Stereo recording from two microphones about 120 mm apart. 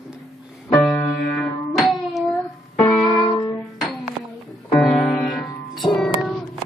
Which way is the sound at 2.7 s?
25° left (ahead or behind).